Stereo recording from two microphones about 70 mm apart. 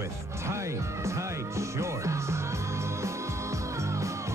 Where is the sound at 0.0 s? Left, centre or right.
Right.